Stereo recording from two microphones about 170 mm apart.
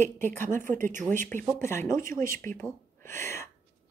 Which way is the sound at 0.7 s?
50° right (ahead or behind).